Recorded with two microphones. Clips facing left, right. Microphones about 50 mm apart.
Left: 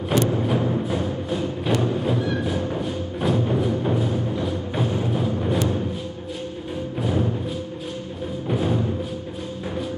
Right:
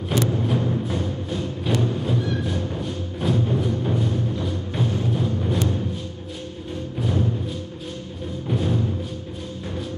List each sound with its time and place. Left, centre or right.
0.1 s music: centre
7.0 s music: centre
8.5 s music: centre